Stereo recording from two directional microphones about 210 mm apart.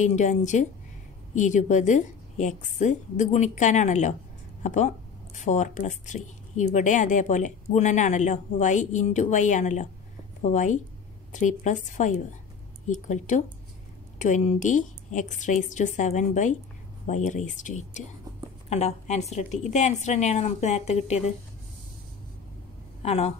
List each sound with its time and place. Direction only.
0.0 s a woman's voice: 35° left (ahead or behind)
23.0 s a woman's voice: 30° left (ahead or behind)